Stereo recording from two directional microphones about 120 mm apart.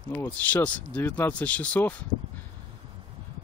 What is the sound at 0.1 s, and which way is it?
Speech, 10° left (ahead or behind).